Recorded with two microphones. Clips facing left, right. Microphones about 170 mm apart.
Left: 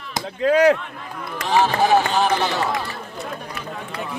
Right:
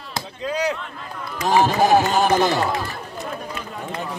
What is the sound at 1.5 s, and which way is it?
Speech, 45° right (ahead or behind).